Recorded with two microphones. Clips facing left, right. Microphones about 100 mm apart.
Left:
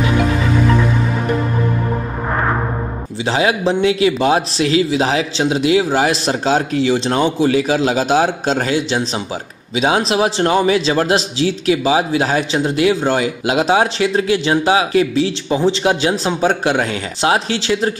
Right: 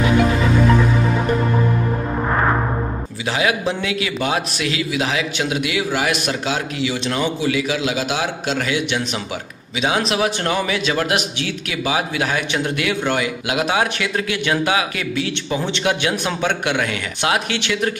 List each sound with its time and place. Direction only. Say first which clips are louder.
3.3 s a man's voice: left 4 dB; 30° left (ahead or behind)